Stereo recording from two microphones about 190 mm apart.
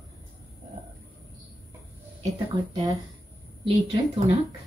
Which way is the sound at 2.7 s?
20° right (ahead or behind).